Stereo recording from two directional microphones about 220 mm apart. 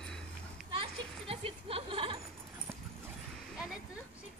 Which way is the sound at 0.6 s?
25° right (ahead or behind).